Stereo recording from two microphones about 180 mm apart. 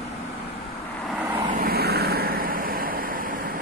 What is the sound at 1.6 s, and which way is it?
Vehicle, 60° right (ahead or behind).